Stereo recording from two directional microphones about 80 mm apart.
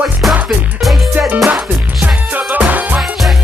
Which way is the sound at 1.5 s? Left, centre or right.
Right.